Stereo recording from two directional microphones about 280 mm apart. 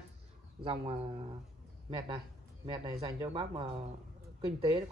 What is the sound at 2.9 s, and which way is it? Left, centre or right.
Speech, centre.